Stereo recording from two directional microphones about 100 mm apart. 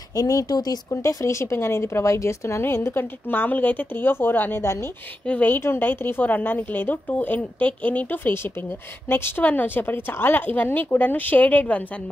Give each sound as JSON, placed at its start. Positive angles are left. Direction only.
{"t": 0.1, "sound": "speech", "side_deg": 35}
{"t": 5.2, "sound": "speech", "side_deg": 15}